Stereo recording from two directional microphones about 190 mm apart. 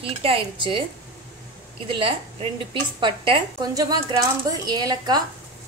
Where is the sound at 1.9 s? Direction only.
25° right (ahead or behind).